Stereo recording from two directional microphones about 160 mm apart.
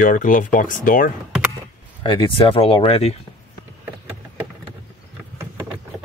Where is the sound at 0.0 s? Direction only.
55° left (ahead or behind).